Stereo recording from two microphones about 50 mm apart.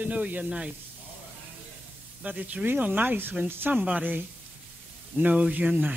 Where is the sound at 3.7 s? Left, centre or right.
Right.